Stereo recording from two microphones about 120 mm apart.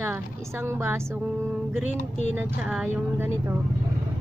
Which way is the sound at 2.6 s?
10° right (ahead or behind).